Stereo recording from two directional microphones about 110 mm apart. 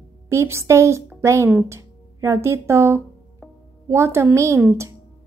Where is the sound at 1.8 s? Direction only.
25° right (ahead or behind).